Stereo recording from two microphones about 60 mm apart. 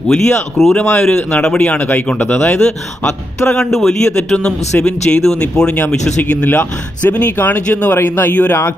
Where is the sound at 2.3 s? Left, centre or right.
Centre.